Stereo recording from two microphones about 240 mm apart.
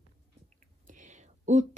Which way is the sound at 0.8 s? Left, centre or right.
Right.